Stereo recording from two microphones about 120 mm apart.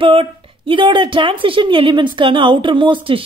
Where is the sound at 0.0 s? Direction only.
50° right (ahead or behind).